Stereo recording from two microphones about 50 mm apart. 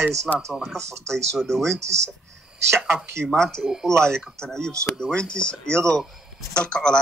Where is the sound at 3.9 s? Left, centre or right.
Right.